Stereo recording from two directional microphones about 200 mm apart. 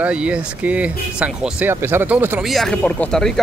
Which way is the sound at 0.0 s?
5° right (ahead or behind).